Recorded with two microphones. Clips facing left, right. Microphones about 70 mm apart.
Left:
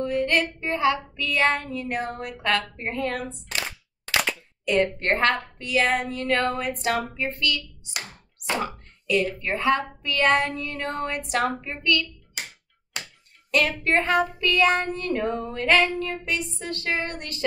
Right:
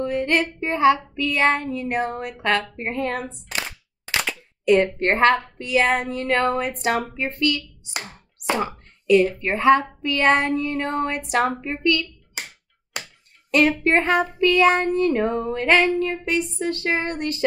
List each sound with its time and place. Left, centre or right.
0.0 s speech: right
3.5 s a sound: centre
4.6 s speech: right
9.1 s speech: right
13.5 s speech: right